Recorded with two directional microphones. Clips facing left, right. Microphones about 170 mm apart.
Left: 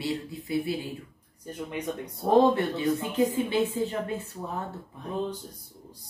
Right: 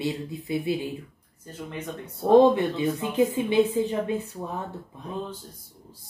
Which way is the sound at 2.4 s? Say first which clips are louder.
Right 3 dB; 15° right (ahead or behind).